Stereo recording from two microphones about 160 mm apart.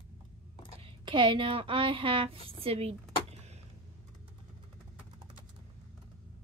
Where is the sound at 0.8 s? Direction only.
35° right (ahead or behind).